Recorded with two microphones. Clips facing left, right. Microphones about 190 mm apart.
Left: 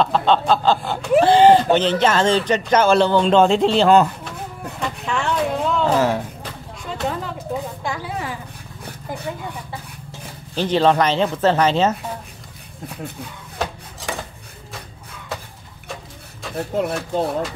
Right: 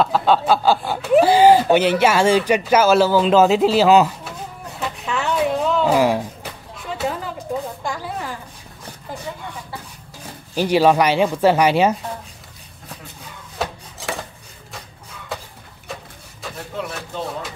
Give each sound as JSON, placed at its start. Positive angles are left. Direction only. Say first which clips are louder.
{"t": 0.0, "sound": "speech", "louder": "even", "side_deg": -5}
{"t": 4.7, "sound": "a sound", "louder": "even", "side_deg": -5}
{"t": 10.5, "sound": "speech", "louder": "right 2 dB", "side_deg": -10}
{"t": 13.6, "sound": "dishes", "louder": "even", "side_deg": -5}
{"t": 16.5, "sound": "speech", "louder": "left 8 dB", "side_deg": 45}